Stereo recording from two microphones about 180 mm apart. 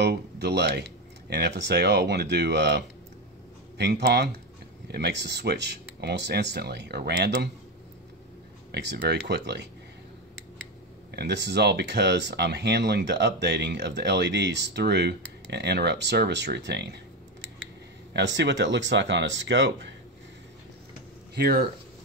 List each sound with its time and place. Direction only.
0.0 s speech: 65° right (ahead or behind)
8.7 s speech: 65° right (ahead or behind)
11.1 s speech: 75° right (ahead or behind)
18.1 s speech: 80° right
21.4 s speech: 60° right (ahead or behind)